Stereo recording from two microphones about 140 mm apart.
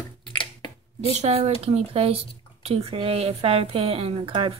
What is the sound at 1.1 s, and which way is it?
Speech, 50° right (ahead or behind).